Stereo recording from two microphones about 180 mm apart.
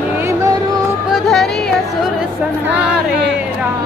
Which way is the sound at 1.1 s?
Centre (ahead or behind).